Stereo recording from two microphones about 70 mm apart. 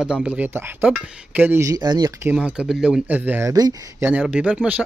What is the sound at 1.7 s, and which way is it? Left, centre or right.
Speech, right.